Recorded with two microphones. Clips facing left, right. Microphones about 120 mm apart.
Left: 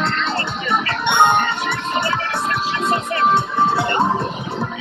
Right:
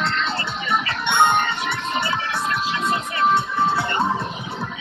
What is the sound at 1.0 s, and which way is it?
Music, 20° left (ahead or behind).